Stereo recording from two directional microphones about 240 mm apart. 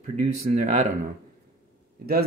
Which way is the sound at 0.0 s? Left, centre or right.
Right.